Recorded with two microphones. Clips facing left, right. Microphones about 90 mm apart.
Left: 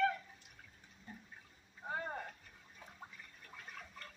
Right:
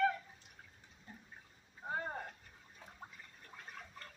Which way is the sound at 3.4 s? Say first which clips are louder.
Even; 25° right (ahead or behind).